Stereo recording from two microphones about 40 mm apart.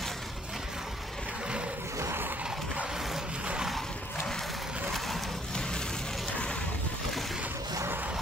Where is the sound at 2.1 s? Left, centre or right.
Right.